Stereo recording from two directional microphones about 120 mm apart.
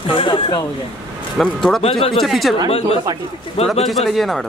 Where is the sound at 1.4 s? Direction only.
5° left (ahead or behind).